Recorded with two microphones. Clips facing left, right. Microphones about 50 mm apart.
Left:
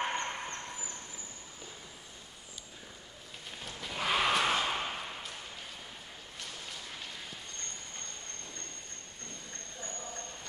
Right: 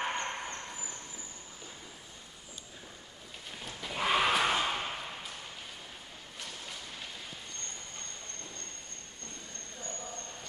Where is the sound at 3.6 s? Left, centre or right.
Centre.